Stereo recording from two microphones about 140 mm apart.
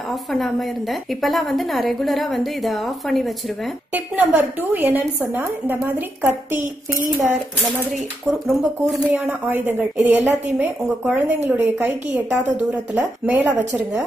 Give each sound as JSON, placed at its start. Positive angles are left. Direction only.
{"t": 0.1, "sound": "a woman's voice", "side_deg": 0}
{"t": 3.9, "sound": "a woman's voice", "side_deg": -10}
{"t": 7.9, "sound": "a woman's voice", "side_deg": 0}
{"t": 9.2, "sound": "a woman's voice", "side_deg": -15}